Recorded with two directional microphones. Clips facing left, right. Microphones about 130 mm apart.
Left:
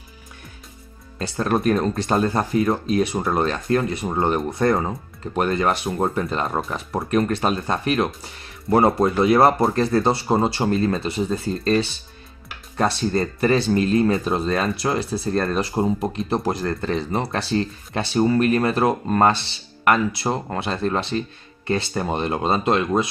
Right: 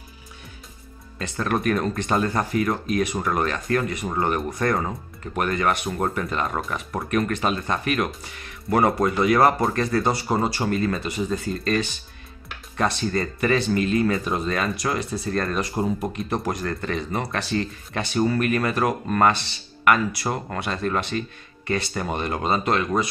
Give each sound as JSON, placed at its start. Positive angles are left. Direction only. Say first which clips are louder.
{"t": 1.1, "sound": "speech", "louder": "left 3 dB", "side_deg": 35}